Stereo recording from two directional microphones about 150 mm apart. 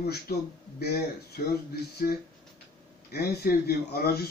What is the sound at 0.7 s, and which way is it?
Speech, 90° left.